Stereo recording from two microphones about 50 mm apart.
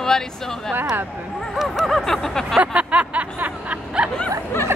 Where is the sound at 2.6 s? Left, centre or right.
Right.